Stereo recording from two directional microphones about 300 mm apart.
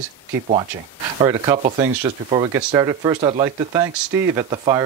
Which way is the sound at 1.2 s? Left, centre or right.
Centre.